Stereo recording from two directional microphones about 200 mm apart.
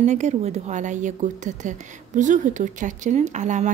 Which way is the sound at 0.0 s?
35° right (ahead or behind).